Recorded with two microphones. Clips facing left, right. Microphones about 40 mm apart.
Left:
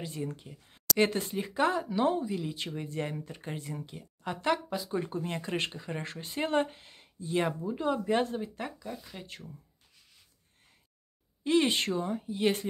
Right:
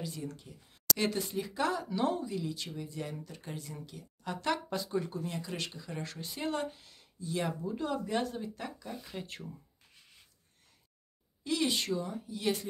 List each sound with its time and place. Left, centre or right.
0.0 s speech: left
2.3 s speech: left
7.6 s speech: left
8.7 s speech: centre
11.4 s speech: left